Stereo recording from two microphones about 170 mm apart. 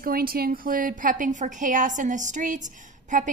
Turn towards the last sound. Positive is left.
turn(degrees=-50)  # may be behind; listen again after turning